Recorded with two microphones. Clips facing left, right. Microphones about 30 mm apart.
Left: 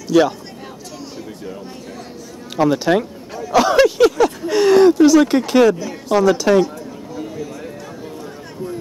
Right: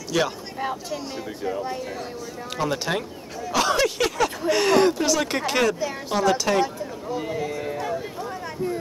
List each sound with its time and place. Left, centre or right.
0.1 s speech: centre
1.4 s speech: centre
2.7 s bird: centre
3.4 s speech: centre
3.8 s a sound: centre
4.5 s speech: centre
5.8 s a sound: centre
6.1 s speech: centre
7.2 s a sound: right